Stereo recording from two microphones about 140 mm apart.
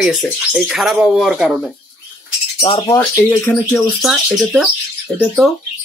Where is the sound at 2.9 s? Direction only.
20° left (ahead or behind).